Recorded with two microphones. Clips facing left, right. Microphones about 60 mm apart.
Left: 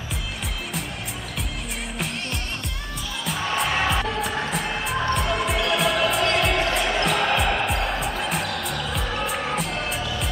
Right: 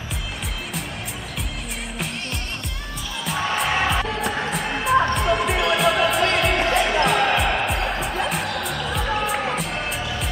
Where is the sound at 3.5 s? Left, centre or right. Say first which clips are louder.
Right 1 dB; centre.